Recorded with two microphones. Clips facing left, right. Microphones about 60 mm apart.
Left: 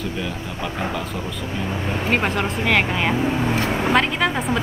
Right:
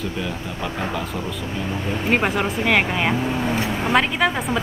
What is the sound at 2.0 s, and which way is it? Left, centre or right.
Speech, centre.